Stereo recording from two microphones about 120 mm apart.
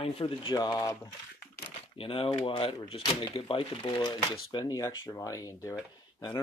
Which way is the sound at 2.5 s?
45° left (ahead or behind).